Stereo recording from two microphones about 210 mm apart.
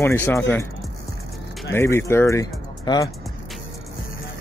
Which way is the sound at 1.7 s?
10° left (ahead or behind).